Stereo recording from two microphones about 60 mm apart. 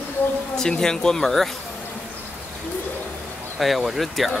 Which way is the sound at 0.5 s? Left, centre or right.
Centre.